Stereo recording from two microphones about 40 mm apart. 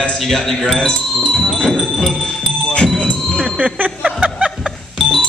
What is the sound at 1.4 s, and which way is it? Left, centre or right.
Speech, left.